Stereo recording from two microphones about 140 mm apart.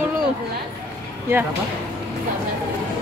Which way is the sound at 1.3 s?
15° right (ahead or behind).